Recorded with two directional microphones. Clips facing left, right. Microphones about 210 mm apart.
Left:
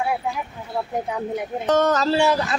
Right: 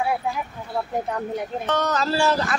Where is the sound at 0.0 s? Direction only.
Centre (ahead or behind).